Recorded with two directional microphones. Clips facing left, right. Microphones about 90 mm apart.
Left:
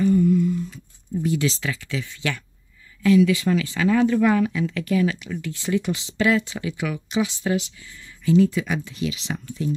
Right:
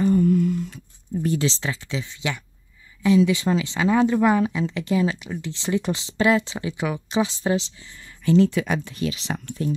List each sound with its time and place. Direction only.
0.0 s a sound: 45° right (ahead or behind)
1.4 s speech: 30° right (ahead or behind)
8.3 s speech: 65° right (ahead or behind); by 9.2 s 45° right (ahead or behind)
9.5 s speech: 70° right (ahead or behind)